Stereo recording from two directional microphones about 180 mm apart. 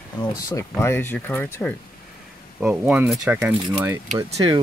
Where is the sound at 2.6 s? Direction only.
5° right (ahead or behind).